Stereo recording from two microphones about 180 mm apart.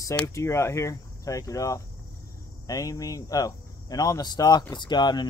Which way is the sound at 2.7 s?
20° left (ahead or behind).